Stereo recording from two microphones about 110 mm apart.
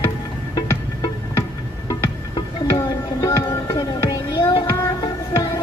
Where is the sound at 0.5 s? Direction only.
35° left (ahead or behind).